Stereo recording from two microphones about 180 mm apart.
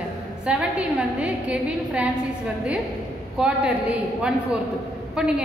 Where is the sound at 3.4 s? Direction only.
5° right (ahead or behind).